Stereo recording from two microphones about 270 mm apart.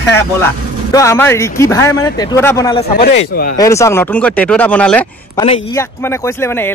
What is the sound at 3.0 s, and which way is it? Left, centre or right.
Speech, left.